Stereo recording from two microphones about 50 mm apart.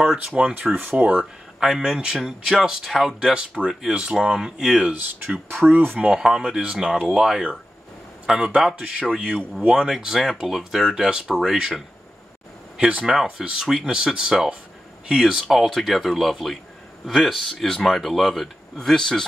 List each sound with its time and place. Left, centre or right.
0.3 s speech: centre
0.7 s speech: right
1.6 s speech: centre
4.9 s speech: right
5.9 s speech: centre
9.8 s speech: centre
13.0 s speech: centre
15.0 s speech: centre